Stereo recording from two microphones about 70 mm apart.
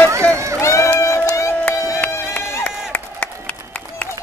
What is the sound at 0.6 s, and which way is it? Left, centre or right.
Run, left.